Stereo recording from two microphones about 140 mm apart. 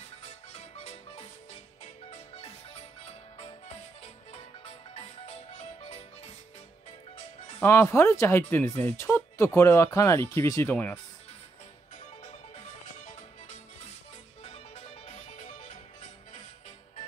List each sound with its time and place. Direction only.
0.5 s music: 50° left (ahead or behind)
1.8 s marimba: 50° left (ahead or behind)
4.0 s music: 45° left (ahead or behind)
7.6 s speech: 20° left (ahead or behind)
14.4 s music: 45° left (ahead or behind)